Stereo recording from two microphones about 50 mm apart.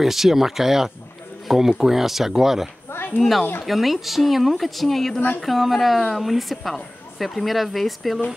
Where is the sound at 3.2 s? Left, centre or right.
Centre.